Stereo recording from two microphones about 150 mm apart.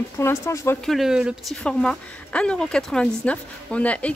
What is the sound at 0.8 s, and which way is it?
Speech, centre (ahead or behind).